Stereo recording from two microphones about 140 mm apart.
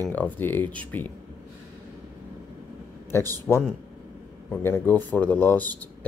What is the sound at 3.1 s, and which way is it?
Speech, 15° left (ahead or behind).